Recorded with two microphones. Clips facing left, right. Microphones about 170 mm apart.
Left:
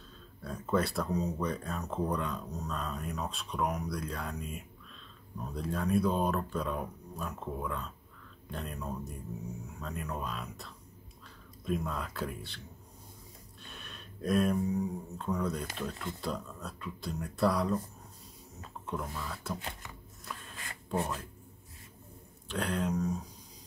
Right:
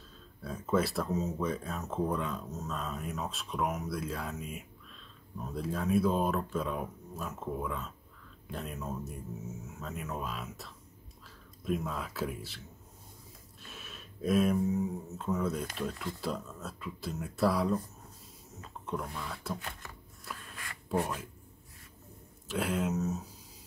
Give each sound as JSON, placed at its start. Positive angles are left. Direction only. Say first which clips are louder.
{"t": 0.4, "sound": "speech", "louder": "right 1 dB", "side_deg": 0}
{"t": 20.5, "sound": "a sound", "louder": "right 2 dB", "side_deg": 25}
{"t": 22.5, "sound": "speech", "louder": "right 1 dB", "side_deg": -5}